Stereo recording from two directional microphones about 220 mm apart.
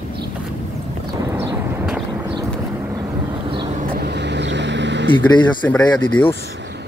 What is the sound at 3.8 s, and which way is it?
Vehicle, 45° right (ahead or behind).